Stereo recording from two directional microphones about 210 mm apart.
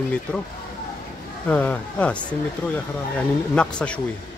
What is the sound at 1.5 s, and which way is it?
A man's voice, 5° left (ahead or behind).